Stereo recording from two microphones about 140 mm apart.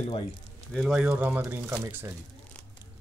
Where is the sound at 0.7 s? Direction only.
Centre (ahead or behind).